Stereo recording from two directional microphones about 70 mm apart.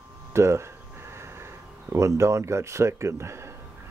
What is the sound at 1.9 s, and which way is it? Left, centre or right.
Speech, right.